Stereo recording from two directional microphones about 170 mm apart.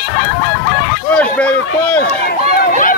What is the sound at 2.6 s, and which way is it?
Run, 55° left (ahead or behind).